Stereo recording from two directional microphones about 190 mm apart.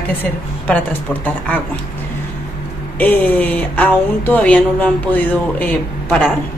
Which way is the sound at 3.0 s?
10° left (ahead or behind).